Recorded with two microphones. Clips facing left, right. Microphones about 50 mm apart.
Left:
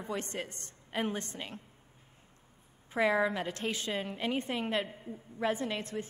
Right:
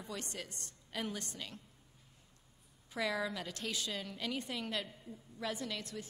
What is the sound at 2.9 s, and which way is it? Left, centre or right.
A woman's voice, left.